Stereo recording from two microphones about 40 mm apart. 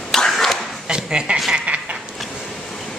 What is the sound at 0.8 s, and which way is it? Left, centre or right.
Speech, right.